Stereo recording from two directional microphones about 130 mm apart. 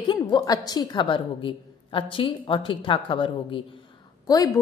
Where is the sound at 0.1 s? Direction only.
30° left (ahead or behind).